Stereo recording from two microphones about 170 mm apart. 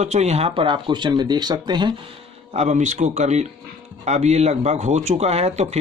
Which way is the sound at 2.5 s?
45° right (ahead or behind).